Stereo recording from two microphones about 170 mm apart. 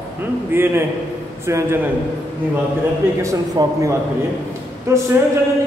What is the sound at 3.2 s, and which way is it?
A man's voice, 20° right (ahead or behind).